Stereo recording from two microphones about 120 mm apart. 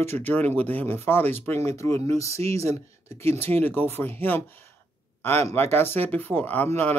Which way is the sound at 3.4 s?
20° left (ahead or behind).